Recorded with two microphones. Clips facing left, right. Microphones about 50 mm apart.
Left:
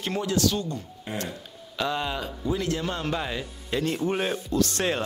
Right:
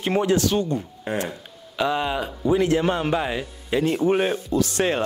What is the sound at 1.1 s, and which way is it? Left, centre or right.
Speech, right.